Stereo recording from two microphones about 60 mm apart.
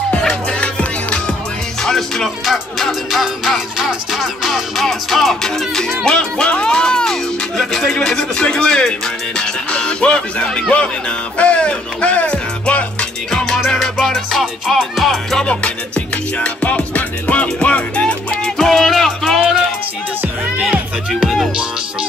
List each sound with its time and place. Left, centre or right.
0.3 s music: centre
13.7 s music: centre
15.3 s music: centre